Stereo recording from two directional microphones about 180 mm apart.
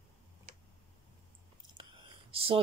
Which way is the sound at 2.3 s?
30° right (ahead or behind).